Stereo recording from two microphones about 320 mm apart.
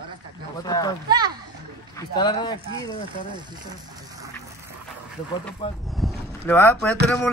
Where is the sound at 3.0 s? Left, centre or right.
Centre.